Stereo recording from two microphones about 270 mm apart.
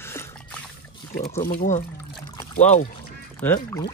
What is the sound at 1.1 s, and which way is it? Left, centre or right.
Speech, left.